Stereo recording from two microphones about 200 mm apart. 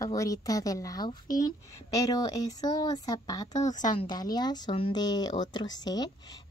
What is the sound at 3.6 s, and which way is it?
Speech, 40° left (ahead or behind).